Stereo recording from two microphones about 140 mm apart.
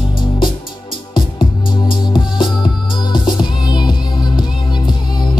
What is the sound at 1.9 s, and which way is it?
Music, 35° left (ahead or behind).